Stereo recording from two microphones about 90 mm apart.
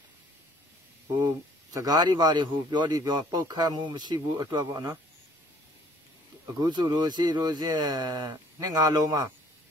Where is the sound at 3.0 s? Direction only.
45° right (ahead or behind).